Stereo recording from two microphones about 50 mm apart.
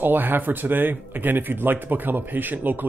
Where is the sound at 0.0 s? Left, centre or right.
Right.